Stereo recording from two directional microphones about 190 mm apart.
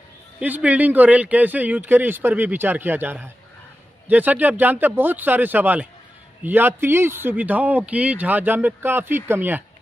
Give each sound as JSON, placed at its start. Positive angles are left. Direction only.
{"t": 0.4, "sound": "speech", "side_deg": -10}